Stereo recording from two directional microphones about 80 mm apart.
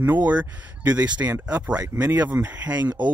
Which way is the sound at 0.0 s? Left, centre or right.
Right.